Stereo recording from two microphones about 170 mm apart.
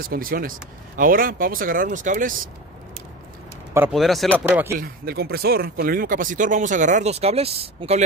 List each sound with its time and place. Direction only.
0.1 s speech: 55° right (ahead or behind)
3.9 s speech: centre (ahead or behind)
4.5 s speech: 10° right (ahead or behind)
4.7 s speech: 65° right (ahead or behind); by 8.0 s 35° right (ahead or behind)